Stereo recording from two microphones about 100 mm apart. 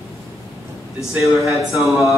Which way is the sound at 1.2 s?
30° right (ahead or behind).